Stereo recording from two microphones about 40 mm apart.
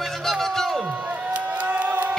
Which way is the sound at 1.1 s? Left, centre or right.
Right.